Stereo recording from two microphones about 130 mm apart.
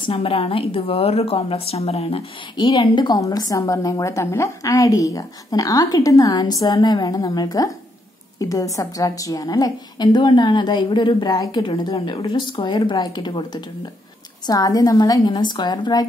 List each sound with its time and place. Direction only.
0.0 s a woman's voice: 45° left (ahead or behind)